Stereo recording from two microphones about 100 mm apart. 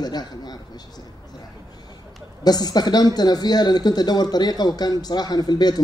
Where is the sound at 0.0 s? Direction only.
45° left (ahead or behind).